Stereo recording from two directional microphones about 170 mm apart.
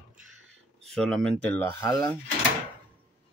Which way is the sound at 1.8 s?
20° left (ahead or behind).